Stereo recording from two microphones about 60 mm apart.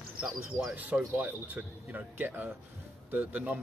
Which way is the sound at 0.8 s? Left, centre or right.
Right.